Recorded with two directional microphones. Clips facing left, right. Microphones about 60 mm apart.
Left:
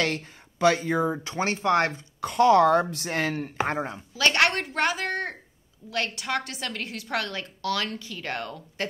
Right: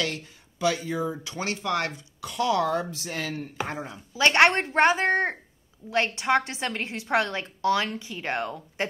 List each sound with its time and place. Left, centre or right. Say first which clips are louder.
0.0 s speech: left 3 dB; left
2.9 s speech: left 5 dB; left
3.6 s speech: left 7 dB; left
4.1 s a woman's voice: right 4 dB; right